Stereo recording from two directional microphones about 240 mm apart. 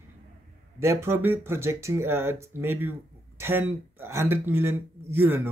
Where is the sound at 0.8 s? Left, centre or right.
Centre.